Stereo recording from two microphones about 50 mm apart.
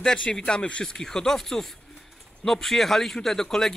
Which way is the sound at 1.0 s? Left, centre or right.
Centre.